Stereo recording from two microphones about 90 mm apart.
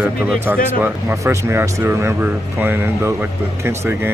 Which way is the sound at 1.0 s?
35° right (ahead or behind).